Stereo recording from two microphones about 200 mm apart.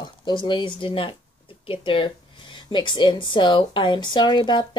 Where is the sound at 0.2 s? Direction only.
25° left (ahead or behind).